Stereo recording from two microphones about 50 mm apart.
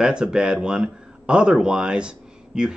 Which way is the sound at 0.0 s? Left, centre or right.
Centre.